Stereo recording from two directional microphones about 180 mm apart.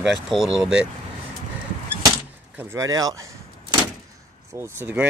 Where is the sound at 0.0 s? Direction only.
Centre (ahead or behind).